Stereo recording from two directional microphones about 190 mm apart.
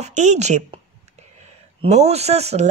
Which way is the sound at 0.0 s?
40° right (ahead or behind).